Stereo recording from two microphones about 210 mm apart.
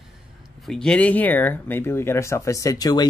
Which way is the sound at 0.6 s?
Centre (ahead or behind).